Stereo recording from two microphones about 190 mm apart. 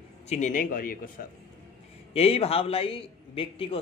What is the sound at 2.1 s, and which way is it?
A man's voice, 30° left (ahead or behind).